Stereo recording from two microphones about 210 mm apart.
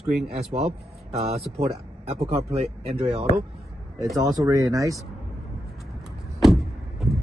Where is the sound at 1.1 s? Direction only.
30° right (ahead or behind).